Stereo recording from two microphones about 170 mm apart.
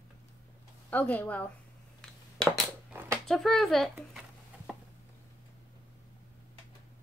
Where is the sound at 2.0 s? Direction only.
5° left (ahead or behind).